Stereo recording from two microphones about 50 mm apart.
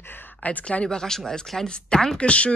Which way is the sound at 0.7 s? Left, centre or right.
Centre.